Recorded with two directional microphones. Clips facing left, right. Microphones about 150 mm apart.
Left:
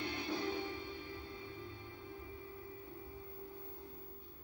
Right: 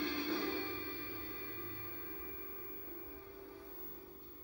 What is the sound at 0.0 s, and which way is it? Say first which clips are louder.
Music: right 2 dB; 15° left (ahead or behind).